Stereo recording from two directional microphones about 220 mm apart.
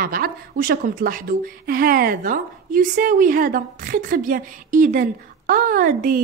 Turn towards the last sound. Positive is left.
turn(degrees=-40)  # may be behind; listen again after turning